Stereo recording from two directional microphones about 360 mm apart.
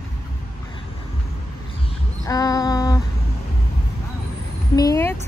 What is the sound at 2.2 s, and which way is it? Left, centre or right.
Female singing, centre.